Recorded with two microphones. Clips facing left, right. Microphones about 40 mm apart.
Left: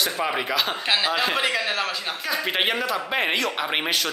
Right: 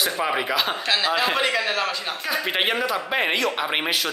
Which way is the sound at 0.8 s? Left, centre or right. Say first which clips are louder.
Even; centre.